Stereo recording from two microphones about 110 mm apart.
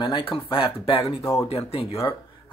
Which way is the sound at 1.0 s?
30° left (ahead or behind).